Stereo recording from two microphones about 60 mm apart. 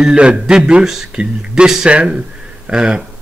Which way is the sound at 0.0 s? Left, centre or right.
Centre.